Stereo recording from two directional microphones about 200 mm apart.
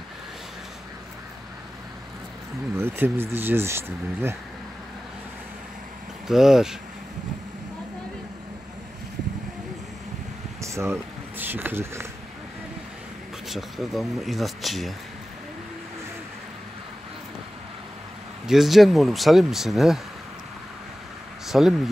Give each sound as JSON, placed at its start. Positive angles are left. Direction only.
{"t": 2.8, "sound": "speech", "side_deg": -10}
{"t": 6.2, "sound": "speech", "side_deg": 0}
{"t": 10.6, "sound": "speech", "side_deg": -15}
{"t": 13.5, "sound": "speech", "side_deg": 0}
{"t": 18.5, "sound": "speech", "side_deg": 0}
{"t": 21.5, "sound": "speech", "side_deg": 0}